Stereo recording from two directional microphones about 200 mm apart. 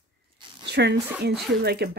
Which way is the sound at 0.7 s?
55° right (ahead or behind).